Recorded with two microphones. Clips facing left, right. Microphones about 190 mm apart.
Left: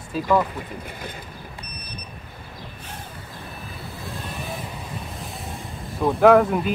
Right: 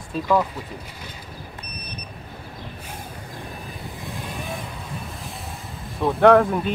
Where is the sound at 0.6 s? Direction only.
55° left (ahead or behind).